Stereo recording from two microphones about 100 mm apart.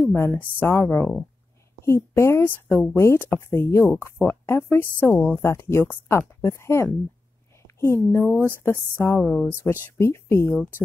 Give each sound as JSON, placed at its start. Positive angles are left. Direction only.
{"t": 0.0, "sound": "a woman's voice", "side_deg": 25}
{"t": 9.2, "sound": "speech", "side_deg": 10}
{"t": 9.9, "sound": "speech", "side_deg": 25}